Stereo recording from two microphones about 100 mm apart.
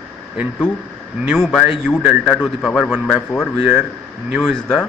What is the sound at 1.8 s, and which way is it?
A man's voice, 10° right (ahead or behind).